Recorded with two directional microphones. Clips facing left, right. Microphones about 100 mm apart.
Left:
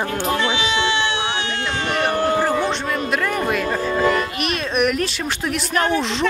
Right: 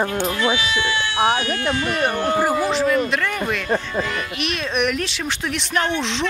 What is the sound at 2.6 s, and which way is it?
Speech, centre (ahead or behind).